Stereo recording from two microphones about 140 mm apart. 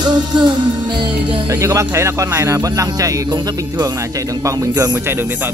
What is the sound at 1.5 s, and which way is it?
Speech, 20° right (ahead or behind).